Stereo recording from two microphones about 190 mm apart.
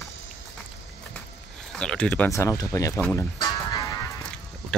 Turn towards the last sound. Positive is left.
turn(degrees=15)  # may be behind; listen again after turning